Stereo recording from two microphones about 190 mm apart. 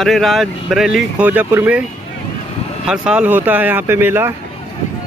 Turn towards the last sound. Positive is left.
turn(degrees=-10)  # may be behind; listen again after turning